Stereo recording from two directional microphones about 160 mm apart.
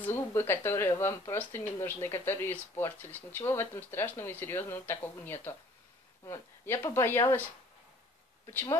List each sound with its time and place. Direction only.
0.0 s speech: 15° left (ahead or behind)
8.5 s speech: 15° left (ahead or behind)